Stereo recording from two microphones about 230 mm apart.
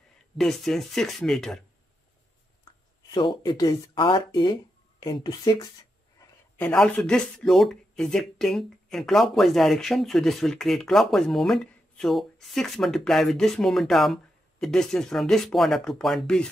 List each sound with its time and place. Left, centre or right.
0.4 s speech: centre
3.1 s speech: left
6.6 s speech: centre